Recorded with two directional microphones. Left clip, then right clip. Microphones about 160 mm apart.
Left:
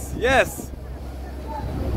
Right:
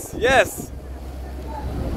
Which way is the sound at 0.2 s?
10° right (ahead or behind).